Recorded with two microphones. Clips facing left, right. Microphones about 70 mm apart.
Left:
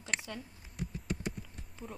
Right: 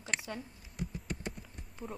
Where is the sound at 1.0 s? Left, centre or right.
Centre.